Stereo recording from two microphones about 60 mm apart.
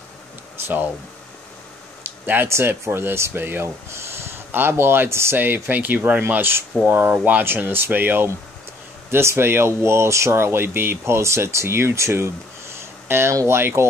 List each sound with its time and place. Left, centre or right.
2.0 s a sound: right
2.4 s speech: right
3.6 s speech: right
5.4 s speech: right
6.2 s speech: right
9.1 s speech: right